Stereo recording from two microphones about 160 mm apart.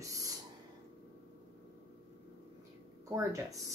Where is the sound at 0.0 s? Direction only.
20° right (ahead or behind).